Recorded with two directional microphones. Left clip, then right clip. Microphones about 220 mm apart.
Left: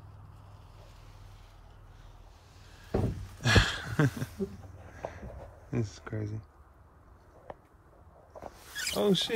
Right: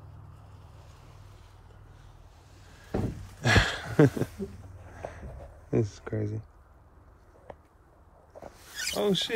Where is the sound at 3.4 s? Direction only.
15° left (ahead or behind).